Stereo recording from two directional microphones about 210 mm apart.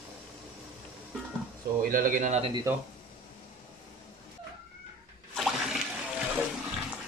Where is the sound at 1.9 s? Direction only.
40° right (ahead or behind).